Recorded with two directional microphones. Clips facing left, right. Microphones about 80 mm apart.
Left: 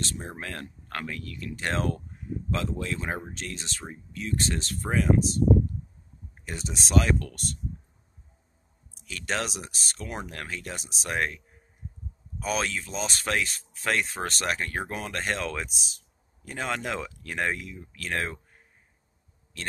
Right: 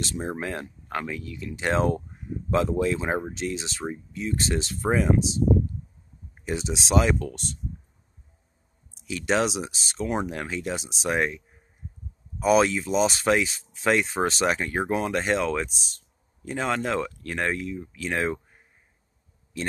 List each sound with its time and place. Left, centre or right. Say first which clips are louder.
0.4 s speech: right 6 dB; centre
2.5 s speech: right 8 dB; right
4.6 s speech: right 4 dB; centre
9.0 s speech: right 7 dB; centre